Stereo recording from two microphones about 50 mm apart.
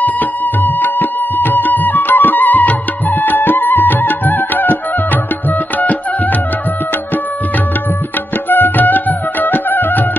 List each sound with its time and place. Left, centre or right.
0.0 s music: left
8.5 s music: left